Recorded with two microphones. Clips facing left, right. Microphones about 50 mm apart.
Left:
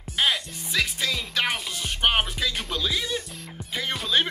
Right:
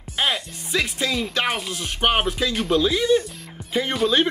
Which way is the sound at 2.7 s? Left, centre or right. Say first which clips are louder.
Right 13 dB; centre.